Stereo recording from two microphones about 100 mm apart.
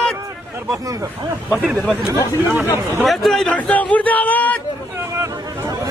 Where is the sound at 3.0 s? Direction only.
Centre (ahead or behind).